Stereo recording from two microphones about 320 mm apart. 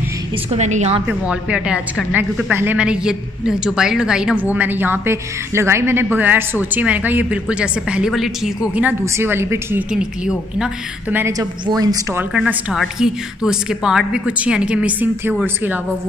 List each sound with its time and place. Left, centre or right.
0.5 s a woman's voice: right
1.0 s a woman's voice: centre